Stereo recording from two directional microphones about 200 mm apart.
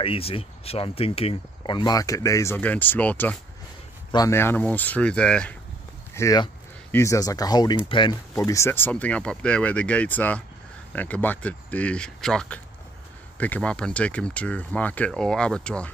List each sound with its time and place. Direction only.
0.0 s speech: 30° left (ahead or behind); by 5.6 s 5° left (ahead or behind)
6.1 s speech: 20° left (ahead or behind)